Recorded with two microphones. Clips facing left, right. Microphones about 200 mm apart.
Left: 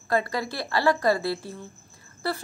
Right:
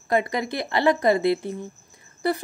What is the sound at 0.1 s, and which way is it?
A woman's voice, 20° right (ahead or behind).